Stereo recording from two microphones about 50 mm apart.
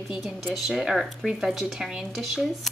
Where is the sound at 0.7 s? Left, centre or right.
Centre.